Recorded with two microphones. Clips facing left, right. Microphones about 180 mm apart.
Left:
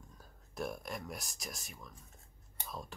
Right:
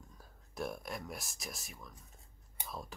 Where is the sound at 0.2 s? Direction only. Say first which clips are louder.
Even; centre (ahead or behind).